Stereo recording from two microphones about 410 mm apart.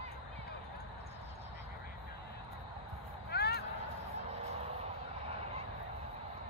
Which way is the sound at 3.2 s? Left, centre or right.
Left.